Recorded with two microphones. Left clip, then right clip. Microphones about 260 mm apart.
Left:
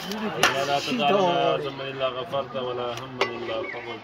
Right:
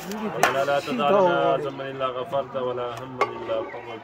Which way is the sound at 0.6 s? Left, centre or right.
Right.